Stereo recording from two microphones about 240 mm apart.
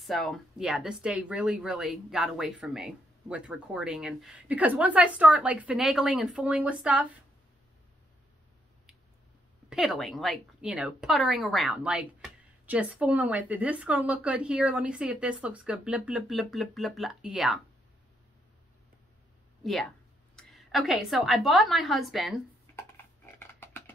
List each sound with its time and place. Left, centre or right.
0.0 s speech: centre
9.7 s speech: centre
19.6 s a woman's voice: centre
23.4 s typing: centre